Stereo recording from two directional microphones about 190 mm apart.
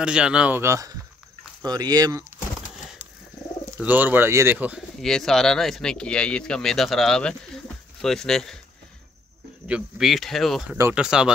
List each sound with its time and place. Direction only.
0.0 s speech: 5° right (ahead or behind)
3.6 s speech: 15° right (ahead or behind)
5.0 s speech: centre (ahead or behind)
9.7 s speech: 5° right (ahead or behind)